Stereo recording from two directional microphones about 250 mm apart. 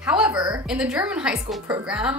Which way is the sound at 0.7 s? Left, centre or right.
Centre.